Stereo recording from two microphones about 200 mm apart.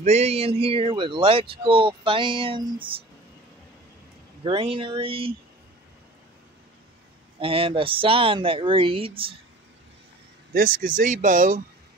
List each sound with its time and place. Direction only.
0.0 s speech: 35° right (ahead or behind)
4.4 s speech: 25° right (ahead or behind)
7.3 s speech: 25° right (ahead or behind)
10.5 s speech: 45° right (ahead or behind)